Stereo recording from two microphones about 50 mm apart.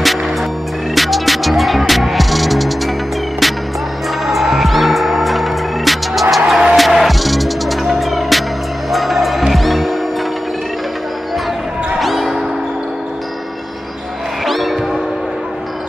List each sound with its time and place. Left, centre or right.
0.0 s music: centre
4.3 s music: centre
12.0 s music: centre
14.4 s music: centre